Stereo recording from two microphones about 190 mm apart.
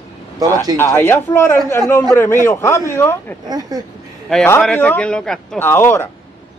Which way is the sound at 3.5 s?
20° right (ahead or behind).